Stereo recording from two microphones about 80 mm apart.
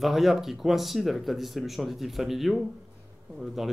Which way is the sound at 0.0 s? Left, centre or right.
Centre.